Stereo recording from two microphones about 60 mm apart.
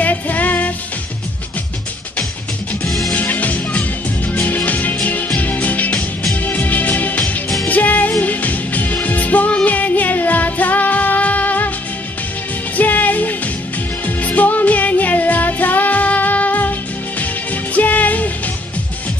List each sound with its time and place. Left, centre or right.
0.0 s music: left
2.8 s music: centre
3.2 s music: left
12.7 s music: left